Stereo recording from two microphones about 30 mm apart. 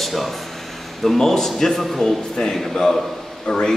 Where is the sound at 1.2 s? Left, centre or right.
Centre.